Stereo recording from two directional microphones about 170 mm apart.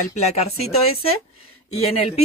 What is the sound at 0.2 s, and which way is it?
Speech, 40° left (ahead or behind).